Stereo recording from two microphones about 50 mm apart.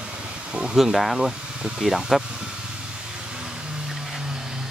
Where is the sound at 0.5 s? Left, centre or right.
Centre.